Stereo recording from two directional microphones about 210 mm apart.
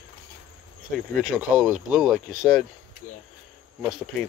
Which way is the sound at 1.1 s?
5° right (ahead or behind).